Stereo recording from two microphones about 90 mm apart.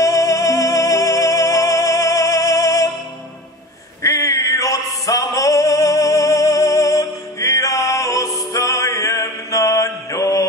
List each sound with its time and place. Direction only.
0.0 s music: 40° left (ahead or behind)
4.0 s music: 40° left (ahead or behind)